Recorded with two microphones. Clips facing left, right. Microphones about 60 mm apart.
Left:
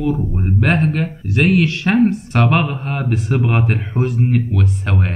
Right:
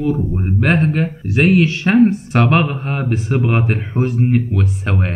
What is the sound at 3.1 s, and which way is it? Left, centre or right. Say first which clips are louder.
Speech: even; centre.